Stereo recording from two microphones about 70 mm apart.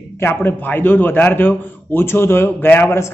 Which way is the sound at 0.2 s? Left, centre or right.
Left.